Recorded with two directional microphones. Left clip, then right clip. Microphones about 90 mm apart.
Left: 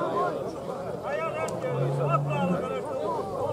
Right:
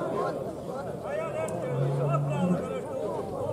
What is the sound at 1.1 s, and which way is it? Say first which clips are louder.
Vehicle: left 2 dB; 10° left (ahead or behind).